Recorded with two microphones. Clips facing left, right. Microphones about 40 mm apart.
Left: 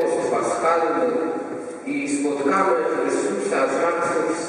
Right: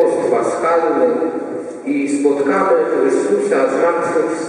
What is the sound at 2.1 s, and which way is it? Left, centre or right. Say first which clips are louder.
A man's voice: right 5 dB; centre.